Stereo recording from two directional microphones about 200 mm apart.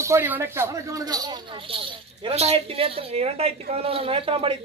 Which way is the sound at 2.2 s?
30° right (ahead or behind).